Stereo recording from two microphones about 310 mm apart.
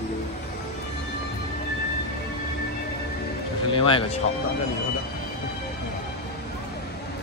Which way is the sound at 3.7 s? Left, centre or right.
Centre.